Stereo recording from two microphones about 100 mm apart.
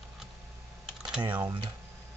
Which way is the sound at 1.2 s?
45° right (ahead or behind).